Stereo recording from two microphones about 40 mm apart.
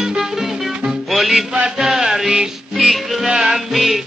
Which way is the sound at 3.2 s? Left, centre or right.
Centre.